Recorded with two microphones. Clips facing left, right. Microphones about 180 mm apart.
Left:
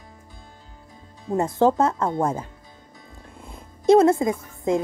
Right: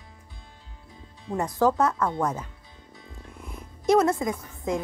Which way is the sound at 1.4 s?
25° left (ahead or behind).